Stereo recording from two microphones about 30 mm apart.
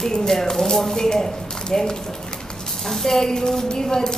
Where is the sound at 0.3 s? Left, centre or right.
Centre.